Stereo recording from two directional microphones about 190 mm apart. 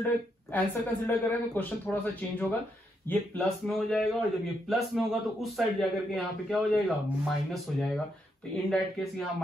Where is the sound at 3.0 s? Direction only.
5° left (ahead or behind).